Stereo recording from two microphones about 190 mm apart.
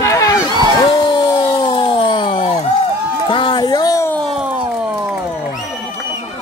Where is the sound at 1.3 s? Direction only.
25° left (ahead or behind).